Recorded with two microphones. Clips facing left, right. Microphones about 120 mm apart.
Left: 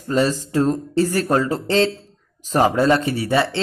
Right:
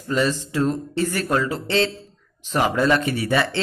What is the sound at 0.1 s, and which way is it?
A man's voice, 40° left (ahead or behind).